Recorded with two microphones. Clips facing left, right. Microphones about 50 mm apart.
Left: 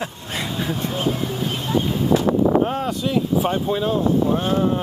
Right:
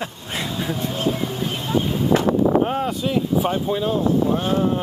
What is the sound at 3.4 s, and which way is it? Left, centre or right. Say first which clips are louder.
Speech: left 1 dB; centre.